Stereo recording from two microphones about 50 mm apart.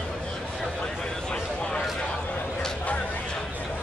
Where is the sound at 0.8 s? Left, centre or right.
Centre.